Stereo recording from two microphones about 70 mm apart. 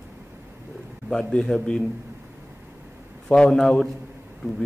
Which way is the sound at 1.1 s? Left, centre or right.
Centre.